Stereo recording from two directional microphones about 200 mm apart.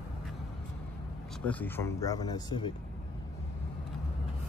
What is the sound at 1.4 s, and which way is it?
Speech, 10° left (ahead or behind).